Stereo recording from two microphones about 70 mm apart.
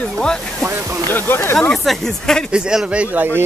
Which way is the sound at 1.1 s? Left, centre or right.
Left.